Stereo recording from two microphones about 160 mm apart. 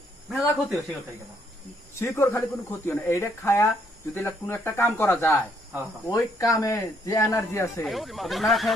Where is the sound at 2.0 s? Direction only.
15° left (ahead or behind).